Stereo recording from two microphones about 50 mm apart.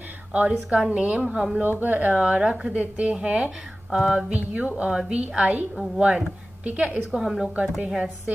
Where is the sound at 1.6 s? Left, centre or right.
Right.